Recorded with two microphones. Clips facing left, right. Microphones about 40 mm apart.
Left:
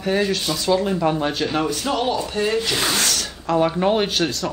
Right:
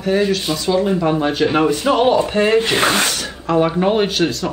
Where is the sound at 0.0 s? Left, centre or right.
Centre; by 3.1 s right.